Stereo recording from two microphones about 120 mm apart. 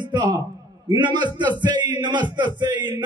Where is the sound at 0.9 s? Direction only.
40° right (ahead or behind).